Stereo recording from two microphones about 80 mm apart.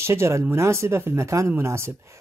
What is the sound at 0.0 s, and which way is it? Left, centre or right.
Speech, right.